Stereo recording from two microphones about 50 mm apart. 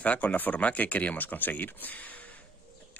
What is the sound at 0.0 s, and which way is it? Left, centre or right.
Speech, left.